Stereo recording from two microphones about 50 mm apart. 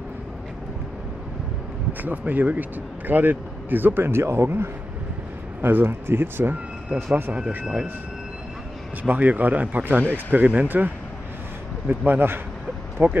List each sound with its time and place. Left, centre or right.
1.9 s speech: right
5.6 s speech: right
6.9 s speech: right
7.3 s speech: centre
9.0 s speech: right
12.1 s speech: right